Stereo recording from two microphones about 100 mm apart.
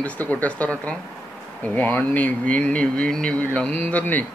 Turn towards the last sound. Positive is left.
turn(degrees=15)  # may be behind; listen again after turning